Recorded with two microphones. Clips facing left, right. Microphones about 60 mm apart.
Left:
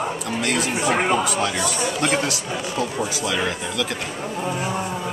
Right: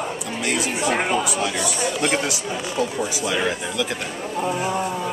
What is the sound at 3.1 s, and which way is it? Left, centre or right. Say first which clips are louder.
Speech: right 1 dB; centre.